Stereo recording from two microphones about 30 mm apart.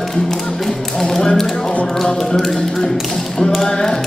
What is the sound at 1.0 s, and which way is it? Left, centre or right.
Tap, centre.